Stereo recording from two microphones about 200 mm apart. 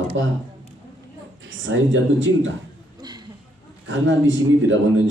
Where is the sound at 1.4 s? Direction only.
70° right (ahead or behind).